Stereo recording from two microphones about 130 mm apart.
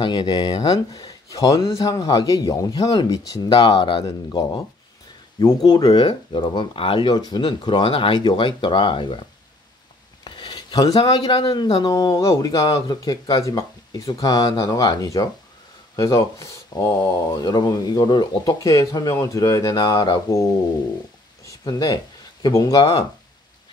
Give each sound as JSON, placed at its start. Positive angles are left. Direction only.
{"t": 0.0, "sound": "speech", "side_deg": 35}
{"t": 5.7, "sound": "speech", "side_deg": 35}
{"t": 10.2, "sound": "a sound", "side_deg": 35}
{"t": 11.1, "sound": "speech", "side_deg": 30}
{"t": 21.5, "sound": "speech", "side_deg": 30}